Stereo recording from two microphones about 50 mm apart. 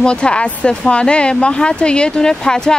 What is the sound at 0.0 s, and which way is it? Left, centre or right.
Speech, centre.